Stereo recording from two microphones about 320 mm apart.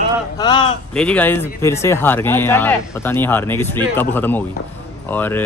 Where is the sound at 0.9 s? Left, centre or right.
Centre.